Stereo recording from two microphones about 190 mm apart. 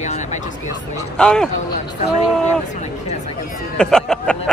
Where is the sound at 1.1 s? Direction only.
5° left (ahead or behind).